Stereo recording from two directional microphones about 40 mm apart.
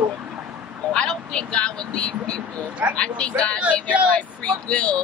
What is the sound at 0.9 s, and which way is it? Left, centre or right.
Vehicle, left.